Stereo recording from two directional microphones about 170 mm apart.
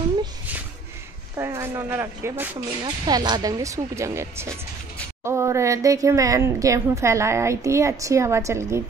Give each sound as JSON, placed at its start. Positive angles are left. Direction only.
{"t": 1.3, "sound": "speech", "side_deg": -15}
{"t": 2.8, "sound": "speech", "side_deg": -25}